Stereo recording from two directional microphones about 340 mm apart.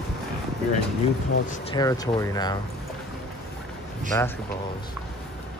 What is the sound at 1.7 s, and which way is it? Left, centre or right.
Speech, centre.